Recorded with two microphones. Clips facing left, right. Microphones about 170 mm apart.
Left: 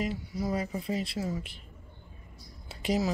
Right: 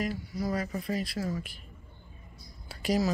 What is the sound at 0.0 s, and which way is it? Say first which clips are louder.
Speech: even; 25° left (ahead or behind).